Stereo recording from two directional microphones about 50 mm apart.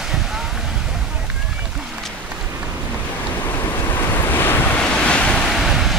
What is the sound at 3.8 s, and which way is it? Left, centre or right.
Waves, left.